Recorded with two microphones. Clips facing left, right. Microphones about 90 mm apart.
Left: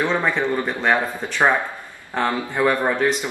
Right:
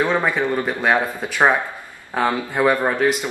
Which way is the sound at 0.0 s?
10° right (ahead or behind).